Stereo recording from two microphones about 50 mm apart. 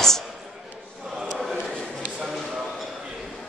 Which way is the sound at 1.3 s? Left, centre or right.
Centre.